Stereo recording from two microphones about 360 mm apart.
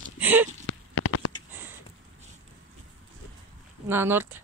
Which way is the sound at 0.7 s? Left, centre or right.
Left.